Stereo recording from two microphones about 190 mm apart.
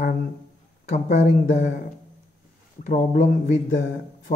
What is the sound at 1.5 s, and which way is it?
Speech, 40° left (ahead or behind).